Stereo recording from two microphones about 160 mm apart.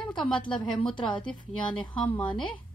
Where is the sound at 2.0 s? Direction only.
5° left (ahead or behind).